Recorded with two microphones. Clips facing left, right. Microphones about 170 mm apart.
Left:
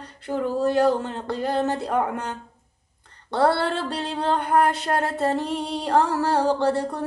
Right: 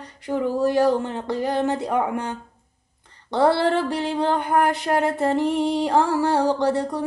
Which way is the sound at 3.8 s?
15° right (ahead or behind).